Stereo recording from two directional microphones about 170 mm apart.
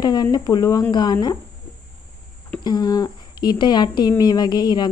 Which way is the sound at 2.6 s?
25° left (ahead or behind).